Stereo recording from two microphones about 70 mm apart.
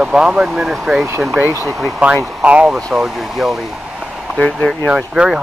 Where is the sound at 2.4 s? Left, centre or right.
Centre.